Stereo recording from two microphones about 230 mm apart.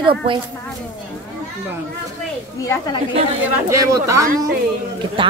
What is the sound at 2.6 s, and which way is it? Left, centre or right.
Speech, centre.